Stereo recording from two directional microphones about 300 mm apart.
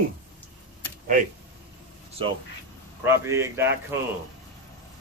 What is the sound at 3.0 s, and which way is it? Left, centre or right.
Speech, centre.